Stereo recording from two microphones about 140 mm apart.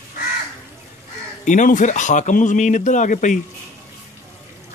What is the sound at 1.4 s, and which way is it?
Speech, 65° left (ahead or behind).